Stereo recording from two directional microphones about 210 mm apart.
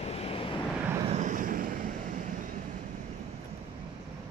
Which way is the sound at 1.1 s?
35° right (ahead or behind).